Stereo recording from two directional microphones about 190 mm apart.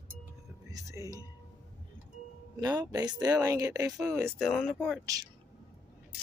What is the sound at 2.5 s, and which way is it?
Speech, 20° right (ahead or behind).